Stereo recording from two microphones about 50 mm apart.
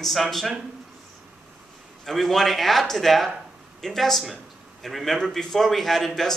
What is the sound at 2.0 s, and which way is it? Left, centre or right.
Speech, centre.